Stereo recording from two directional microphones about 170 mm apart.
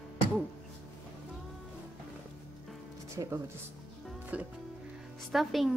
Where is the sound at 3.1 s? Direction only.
15° right (ahead or behind).